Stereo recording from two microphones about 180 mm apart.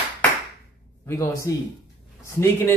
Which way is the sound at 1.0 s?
15° left (ahead or behind).